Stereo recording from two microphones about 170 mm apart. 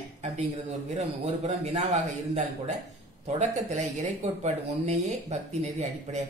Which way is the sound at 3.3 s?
40° right (ahead or behind).